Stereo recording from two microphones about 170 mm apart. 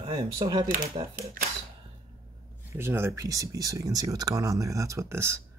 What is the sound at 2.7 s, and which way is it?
Speech, 15° right (ahead or behind).